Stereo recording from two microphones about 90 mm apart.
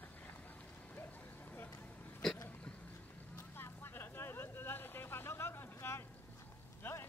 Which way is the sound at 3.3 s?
25° left (ahead or behind).